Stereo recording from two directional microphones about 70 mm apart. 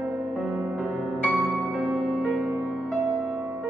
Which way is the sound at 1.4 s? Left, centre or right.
Centre.